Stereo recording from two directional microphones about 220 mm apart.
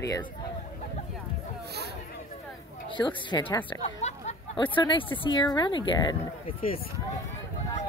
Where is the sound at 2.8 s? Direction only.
20° left (ahead or behind).